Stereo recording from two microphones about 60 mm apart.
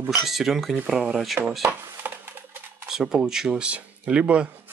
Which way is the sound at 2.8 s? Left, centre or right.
Centre.